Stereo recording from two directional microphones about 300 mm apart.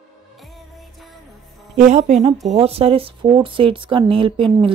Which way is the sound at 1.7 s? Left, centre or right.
Right.